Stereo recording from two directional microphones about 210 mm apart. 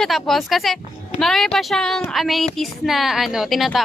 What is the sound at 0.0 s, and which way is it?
A woman's voice, centre (ahead or behind).